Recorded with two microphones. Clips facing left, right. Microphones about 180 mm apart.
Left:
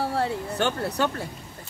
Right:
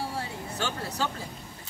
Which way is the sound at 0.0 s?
65° left (ahead or behind).